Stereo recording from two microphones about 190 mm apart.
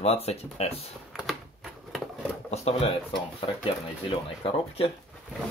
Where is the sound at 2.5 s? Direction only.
30° left (ahead or behind).